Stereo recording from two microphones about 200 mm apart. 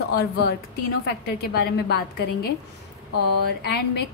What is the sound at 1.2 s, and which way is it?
A woman's voice, 50° left (ahead or behind).